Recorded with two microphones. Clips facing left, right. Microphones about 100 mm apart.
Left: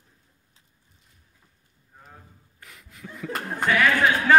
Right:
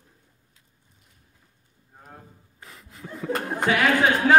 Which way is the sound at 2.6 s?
35° right (ahead or behind).